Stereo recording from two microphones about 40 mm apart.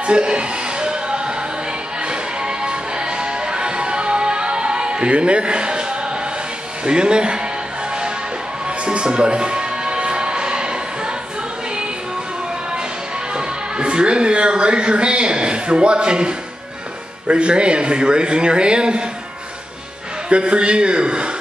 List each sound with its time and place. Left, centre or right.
0.0 s music: right
6.8 s speech: right
8.6 s music: right
13.7 s speech: right
20.2 s speech: right